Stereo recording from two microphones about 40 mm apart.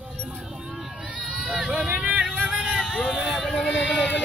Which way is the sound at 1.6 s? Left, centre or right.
Centre.